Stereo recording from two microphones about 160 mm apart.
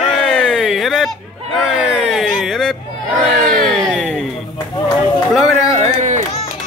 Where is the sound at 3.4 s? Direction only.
60° right (ahead or behind).